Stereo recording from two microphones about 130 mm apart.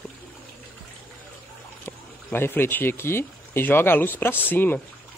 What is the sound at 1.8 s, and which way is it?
Speech, 15° left (ahead or behind).